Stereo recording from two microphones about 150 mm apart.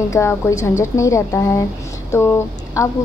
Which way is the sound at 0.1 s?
20° left (ahead or behind).